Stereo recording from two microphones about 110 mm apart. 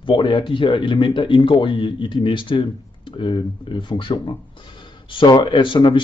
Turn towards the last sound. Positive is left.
turn(degrees=50)  # may be behind; listen again after turning